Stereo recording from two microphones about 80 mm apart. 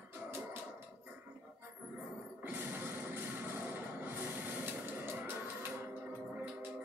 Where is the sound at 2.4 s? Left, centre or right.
Right.